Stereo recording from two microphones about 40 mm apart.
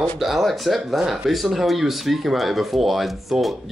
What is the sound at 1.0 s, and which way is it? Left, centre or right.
Speech, centre.